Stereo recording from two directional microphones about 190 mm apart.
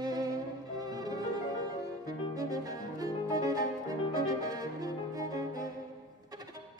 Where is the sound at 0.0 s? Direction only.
20° right (ahead or behind).